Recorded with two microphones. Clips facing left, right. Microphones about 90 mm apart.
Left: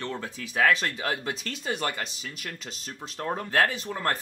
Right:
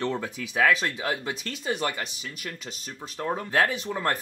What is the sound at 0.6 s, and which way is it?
Speech, 5° right (ahead or behind).